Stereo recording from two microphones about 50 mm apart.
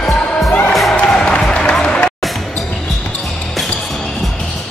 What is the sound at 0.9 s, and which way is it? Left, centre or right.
Music, left.